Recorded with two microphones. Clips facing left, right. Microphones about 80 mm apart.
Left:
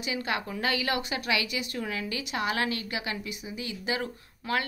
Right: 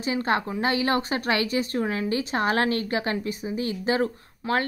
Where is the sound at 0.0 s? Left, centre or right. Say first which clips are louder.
Right 7 dB; right.